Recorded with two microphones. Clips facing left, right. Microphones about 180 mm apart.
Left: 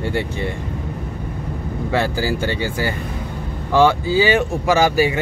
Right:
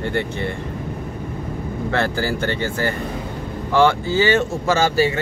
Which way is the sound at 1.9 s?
10° left (ahead or behind).